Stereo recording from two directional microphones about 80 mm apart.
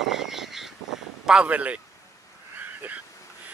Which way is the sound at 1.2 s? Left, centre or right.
Centre.